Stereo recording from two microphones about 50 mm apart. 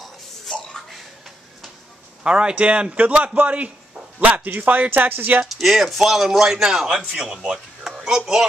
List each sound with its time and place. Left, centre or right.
2.2 s speech: right
5.6 s a man's voice: centre
7.4 s music: centre
7.9 s a sound: centre